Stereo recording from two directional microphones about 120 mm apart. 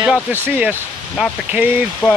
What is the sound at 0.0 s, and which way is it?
Speech, 15° right (ahead or behind).